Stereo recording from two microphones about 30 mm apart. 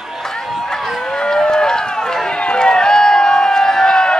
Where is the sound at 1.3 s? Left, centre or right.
Left.